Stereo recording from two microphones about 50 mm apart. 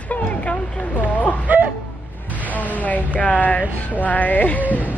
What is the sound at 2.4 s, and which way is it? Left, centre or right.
Speech, left.